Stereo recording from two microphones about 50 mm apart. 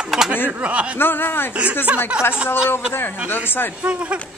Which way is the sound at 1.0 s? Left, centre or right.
Left.